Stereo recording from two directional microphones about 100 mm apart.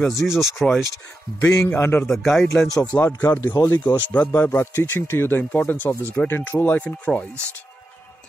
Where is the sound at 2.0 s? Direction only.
5° left (ahead or behind).